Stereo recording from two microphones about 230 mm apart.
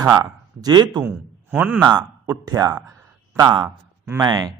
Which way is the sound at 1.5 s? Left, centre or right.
Centre.